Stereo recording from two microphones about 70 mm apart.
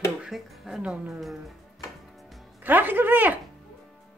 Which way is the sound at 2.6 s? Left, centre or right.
Right.